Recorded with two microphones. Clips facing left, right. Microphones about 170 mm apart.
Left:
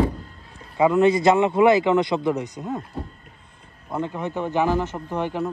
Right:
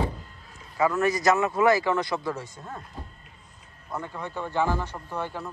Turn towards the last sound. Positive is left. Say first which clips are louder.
# left 7 dB
turn(degrees=15)  # may be behind; listen again after turning